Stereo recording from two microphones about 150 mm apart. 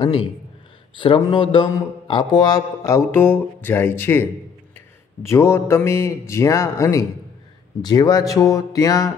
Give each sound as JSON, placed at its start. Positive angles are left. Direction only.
{"t": 0.9, "sound": "speech", "side_deg": 35}